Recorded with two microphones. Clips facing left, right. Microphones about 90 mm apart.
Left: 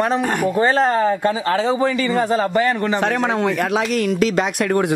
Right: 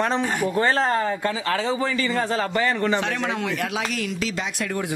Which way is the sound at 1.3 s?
35° left (ahead or behind).